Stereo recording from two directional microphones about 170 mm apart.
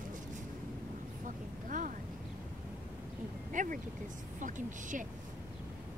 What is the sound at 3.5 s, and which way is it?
Vehicle, 50° right (ahead or behind).